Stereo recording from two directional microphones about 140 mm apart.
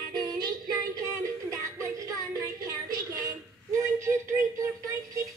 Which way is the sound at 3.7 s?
20° right (ahead or behind).